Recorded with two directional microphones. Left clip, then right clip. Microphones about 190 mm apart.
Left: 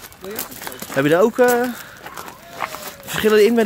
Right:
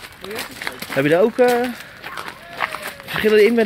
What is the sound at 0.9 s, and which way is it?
Speech, 10° left (ahead or behind).